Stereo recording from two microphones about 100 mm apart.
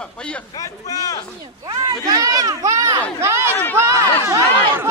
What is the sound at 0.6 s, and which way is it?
Speech, 35° left (ahead or behind).